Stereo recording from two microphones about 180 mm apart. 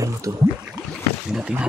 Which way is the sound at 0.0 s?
20° right (ahead or behind).